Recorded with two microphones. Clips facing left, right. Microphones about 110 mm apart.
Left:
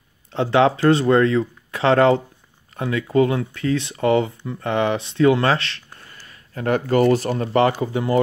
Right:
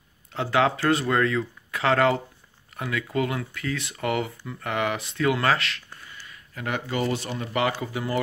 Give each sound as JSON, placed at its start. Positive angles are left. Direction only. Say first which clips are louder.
{"t": 0.3, "sound": "speech", "louder": "left 6 dB", "side_deg": 25}
{"t": 5.9, "sound": "a sound", "louder": "even", "side_deg": 40}
{"t": 7.0, "sound": "speech", "louder": "left 11 dB", "side_deg": 45}
{"t": 7.8, "sound": "speech", "louder": "left 8 dB", "side_deg": 25}